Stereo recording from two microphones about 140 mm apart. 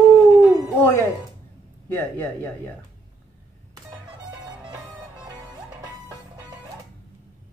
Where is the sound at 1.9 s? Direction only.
15° left (ahead or behind).